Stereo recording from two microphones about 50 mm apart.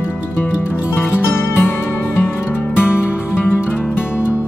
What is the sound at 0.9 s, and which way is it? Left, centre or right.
Music, left.